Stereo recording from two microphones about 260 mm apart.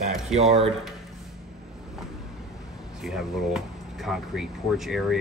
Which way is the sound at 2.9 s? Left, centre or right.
Centre.